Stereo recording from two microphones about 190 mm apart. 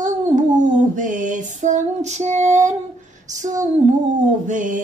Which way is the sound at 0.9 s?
45° right (ahead or behind).